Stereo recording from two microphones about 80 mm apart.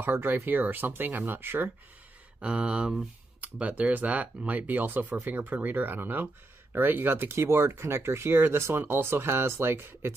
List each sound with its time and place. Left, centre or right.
0.0 s speech: right
2.4 s speech: centre; by 10.1 s right